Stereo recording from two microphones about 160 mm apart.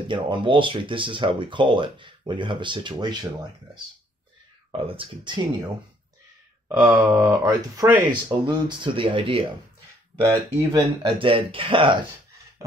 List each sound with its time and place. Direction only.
0.1 s speech: 30° right (ahead or behind)
4.7 s speech: 35° right (ahead or behind)
6.7 s wail: 20° right (ahead or behind)
8.3 s speech: 30° right (ahead or behind)
10.2 s speech: 25° right (ahead or behind)